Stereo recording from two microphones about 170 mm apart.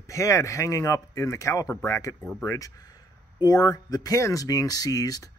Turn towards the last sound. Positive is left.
turn(degrees=20)  # may be behind; listen again after turning